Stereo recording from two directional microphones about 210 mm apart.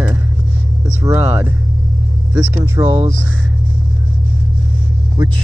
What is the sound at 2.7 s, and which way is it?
Speech, 15° right (ahead or behind).